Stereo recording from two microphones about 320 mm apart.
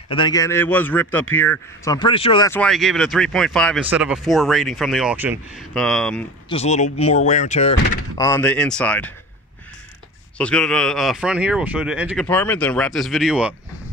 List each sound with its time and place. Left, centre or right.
0.1 s a man's voice: centre
6.5 s speech: left
8.2 s speech: centre
10.3 s speech: centre